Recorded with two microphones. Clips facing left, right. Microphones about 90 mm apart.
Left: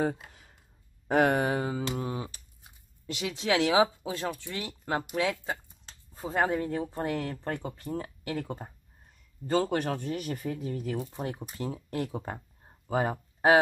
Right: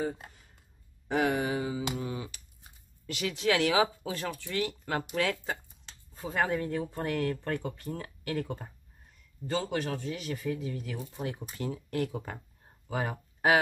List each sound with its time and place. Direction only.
0.0 s a sound: 85° left
1.0 s speech: 50° left (ahead or behind)
2.0 s speech: 35° left (ahead or behind)
3.1 s speech: 20° left (ahead or behind)
5.9 s speech: 30° left (ahead or behind)
9.5 s speech: 45° left (ahead or behind)
11.1 s speech: 30° left (ahead or behind)